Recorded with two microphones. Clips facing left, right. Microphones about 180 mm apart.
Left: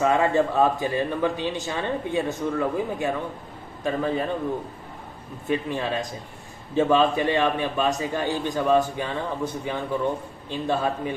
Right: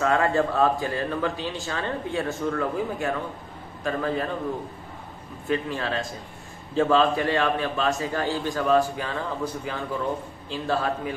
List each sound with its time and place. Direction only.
0.0 s a man's voice: 20° left (ahead or behind)
5.5 s a man's voice: 15° left (ahead or behind)